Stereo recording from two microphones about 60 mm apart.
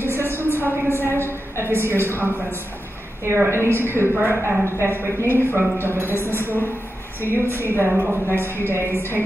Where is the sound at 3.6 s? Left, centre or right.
Left.